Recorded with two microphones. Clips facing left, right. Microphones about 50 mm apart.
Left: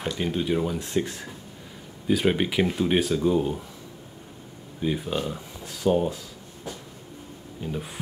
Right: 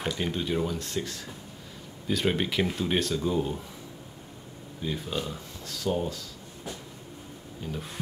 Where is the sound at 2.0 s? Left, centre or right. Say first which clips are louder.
Left 4 dB; centre.